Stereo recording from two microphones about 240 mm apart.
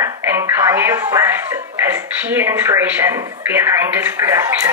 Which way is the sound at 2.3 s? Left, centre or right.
Centre.